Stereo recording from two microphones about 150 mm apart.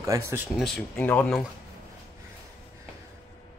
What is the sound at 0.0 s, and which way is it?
Speech, 20° right (ahead or behind).